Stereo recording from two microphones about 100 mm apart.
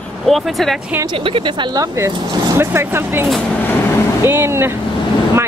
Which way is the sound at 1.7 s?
35° right (ahead or behind).